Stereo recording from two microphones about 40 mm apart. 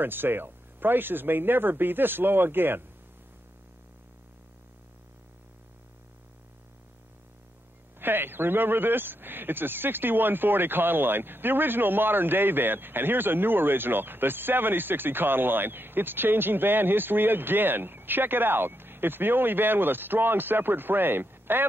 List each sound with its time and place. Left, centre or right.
0.0 s speech: right
8.0 s speech: right